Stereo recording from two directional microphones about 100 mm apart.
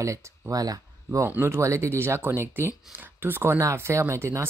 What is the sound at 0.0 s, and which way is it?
Speech, 30° right (ahead or behind).